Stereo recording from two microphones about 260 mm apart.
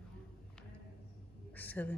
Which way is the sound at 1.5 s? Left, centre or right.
Centre.